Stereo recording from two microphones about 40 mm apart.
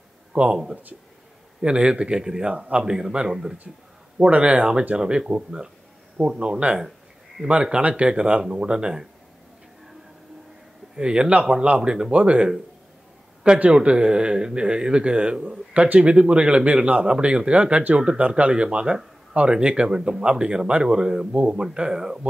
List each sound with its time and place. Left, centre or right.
0.3 s speech: right
1.6 s speech: right
2.5 s speech: right
2.8 s speech: centre
3.7 s speech: centre
4.4 s speech: right
11.0 s speech: right
13.7 s speech: right
21.3 s speech: right
21.7 s speech: centre